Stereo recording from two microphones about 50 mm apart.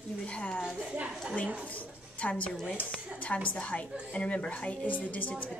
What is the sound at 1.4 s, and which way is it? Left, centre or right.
Speech, right.